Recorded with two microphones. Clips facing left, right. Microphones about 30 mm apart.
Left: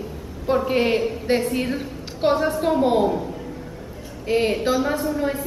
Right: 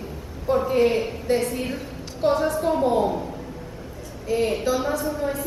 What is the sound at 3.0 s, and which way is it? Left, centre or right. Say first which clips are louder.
Speech: left 2 dB; centre.